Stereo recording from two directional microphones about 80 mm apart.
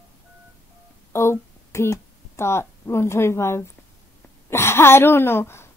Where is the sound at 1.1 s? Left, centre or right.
Left.